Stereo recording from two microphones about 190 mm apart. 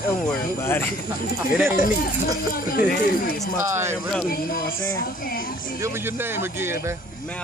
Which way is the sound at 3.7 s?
15° right (ahead or behind).